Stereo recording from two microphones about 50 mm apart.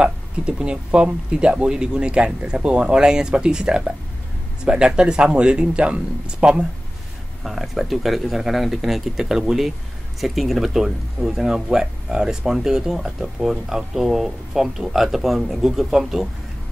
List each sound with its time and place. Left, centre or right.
0.0 s speech: right
7.4 s speech: centre
9.2 s speech: centre